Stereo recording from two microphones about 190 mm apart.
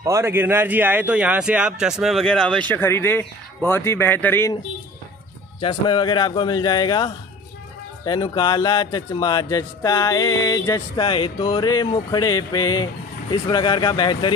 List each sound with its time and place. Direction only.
0.0 s a man's voice: 15° right (ahead or behind); by 4.6 s 10° left (ahead or behind)
5.6 s a man's voice: 25° left (ahead or behind)